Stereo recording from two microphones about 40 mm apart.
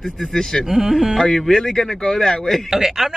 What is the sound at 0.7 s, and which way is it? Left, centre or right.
Speech, centre.